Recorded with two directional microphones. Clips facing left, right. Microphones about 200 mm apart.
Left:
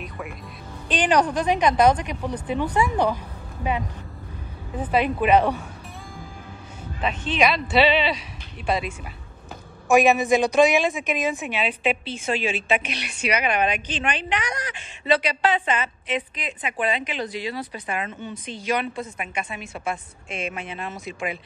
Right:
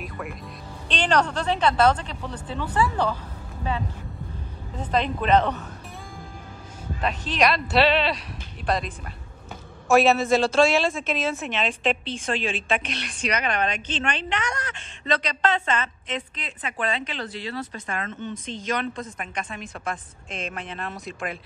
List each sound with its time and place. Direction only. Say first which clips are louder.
0.8 s a woman's voice: left 2 dB; 10° left (ahead or behind)
4.9 s a woman's voice: left 2 dB; 10° left (ahead or behind)
7.0 s speech: left 1 dB; centre (ahead or behind)
9.8 s a woman's voice: left 1 dB; 15° left (ahead or behind)